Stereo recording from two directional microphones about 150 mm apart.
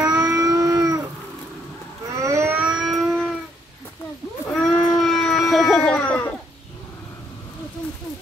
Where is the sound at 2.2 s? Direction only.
20° right (ahead or behind); by 3.3 s centre (ahead or behind).